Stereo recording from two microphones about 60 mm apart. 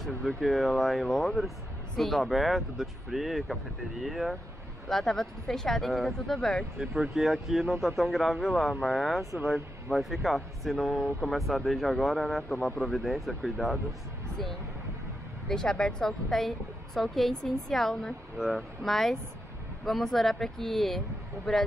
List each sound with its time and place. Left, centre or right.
0.4 s a woman's voice: centre
4.8 s speech: centre
6.8 s a woman's voice: centre
15.4 s a woman's voice: centre